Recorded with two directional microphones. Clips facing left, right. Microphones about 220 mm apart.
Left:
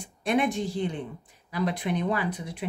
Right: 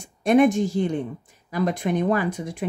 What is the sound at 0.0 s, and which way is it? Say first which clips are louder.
Speech: right 8 dB; 45° right (ahead or behind).